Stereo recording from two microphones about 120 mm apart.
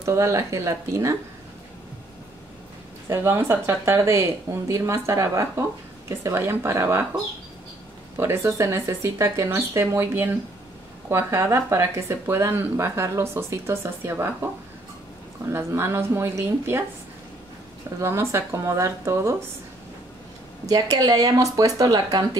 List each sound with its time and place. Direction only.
0.0 s speech: 25° right (ahead or behind)
3.1 s speech: 20° right (ahead or behind)
8.2 s speech: 25° right (ahead or behind)
15.5 s speech: 20° right (ahead or behind)
18.0 s speech: 25° right (ahead or behind)
20.6 s speech: 30° right (ahead or behind)